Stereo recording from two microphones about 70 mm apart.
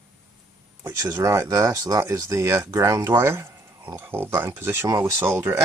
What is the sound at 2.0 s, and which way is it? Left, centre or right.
Speech, right.